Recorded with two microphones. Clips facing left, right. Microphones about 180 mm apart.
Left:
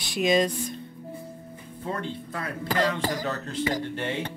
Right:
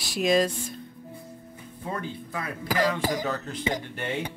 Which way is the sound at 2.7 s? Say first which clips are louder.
Right 1 dB; 10° right (ahead or behind).